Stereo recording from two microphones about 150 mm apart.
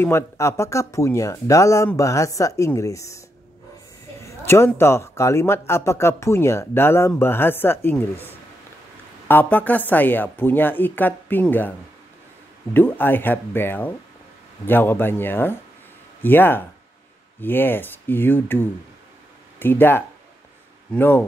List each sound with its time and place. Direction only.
0.0 s speech: 20° left (ahead or behind)
4.2 s a sound: 20° left (ahead or behind)
4.7 s speech: 20° left (ahead or behind)
12.7 s speech: 15° left (ahead or behind)